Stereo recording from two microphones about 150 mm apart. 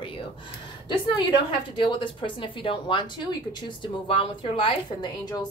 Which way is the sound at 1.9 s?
35° left (ahead or behind).